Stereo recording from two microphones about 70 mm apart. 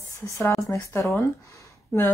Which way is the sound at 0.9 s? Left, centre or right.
Left.